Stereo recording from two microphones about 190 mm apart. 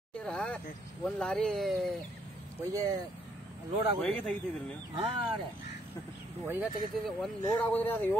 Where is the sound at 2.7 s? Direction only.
20° right (ahead or behind).